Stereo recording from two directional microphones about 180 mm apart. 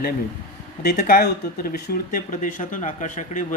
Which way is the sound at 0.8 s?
55° left (ahead or behind).